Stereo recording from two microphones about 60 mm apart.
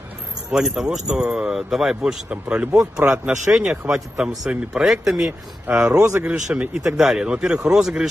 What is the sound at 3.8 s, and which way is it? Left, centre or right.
Speech, centre.